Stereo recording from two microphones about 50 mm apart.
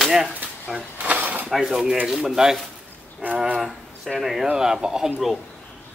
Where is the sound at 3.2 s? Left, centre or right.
Right.